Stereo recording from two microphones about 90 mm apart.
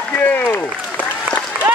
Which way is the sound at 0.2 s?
20° left (ahead or behind).